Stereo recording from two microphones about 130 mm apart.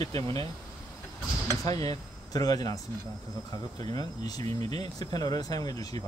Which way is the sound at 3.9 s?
30° left (ahead or behind).